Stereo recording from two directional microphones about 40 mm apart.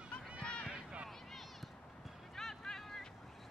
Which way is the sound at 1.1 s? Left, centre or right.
Centre.